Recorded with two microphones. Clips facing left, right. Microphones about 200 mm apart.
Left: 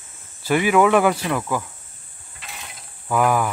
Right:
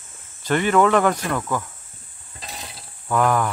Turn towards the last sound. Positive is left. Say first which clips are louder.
# even
turn(degrees=5)  # may be behind; listen again after turning